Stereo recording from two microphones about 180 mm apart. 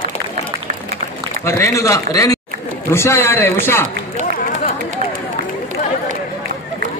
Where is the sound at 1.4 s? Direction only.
15° left (ahead or behind).